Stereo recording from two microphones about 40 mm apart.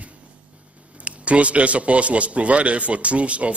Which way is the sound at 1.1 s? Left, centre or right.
Right.